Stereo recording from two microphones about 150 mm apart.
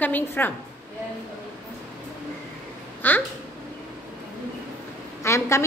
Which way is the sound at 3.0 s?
15° left (ahead or behind).